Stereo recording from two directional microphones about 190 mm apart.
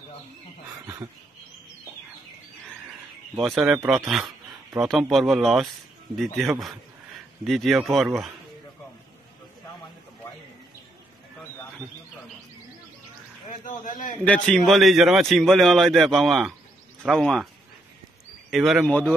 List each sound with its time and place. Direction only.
3.3 s a man's voice: centre (ahead or behind)
13.8 s a man's voice: 45° left (ahead or behind)
14.2 s a man's voice: 5° left (ahead or behind)
18.5 s a man's voice: centre (ahead or behind)